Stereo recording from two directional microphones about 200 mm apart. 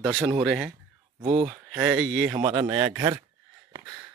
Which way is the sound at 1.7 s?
5° right (ahead or behind).